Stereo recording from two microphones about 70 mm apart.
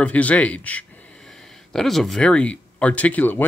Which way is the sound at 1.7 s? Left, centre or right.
Centre.